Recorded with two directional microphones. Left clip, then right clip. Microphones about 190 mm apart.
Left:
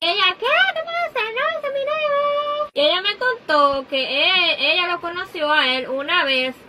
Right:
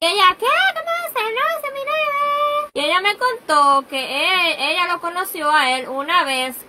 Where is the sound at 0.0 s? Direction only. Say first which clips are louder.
Right 4 dB; centre (ahead or behind).